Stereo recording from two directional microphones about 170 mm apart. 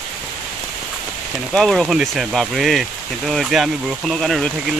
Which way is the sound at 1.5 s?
Centre (ahead or behind).